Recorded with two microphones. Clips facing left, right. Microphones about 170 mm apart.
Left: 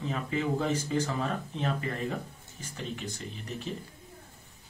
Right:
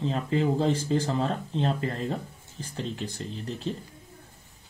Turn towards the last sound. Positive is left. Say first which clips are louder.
# right 5 dB
turn(degrees=-35)  # may be behind; listen again after turning